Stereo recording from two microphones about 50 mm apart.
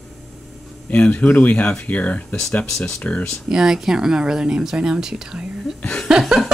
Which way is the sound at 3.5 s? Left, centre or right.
Centre.